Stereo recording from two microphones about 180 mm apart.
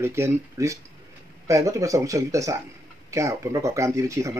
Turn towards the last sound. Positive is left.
turn(degrees=-15)  # may be behind; listen again after turning